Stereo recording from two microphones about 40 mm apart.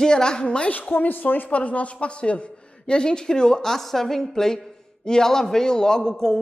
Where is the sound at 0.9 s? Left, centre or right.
Left.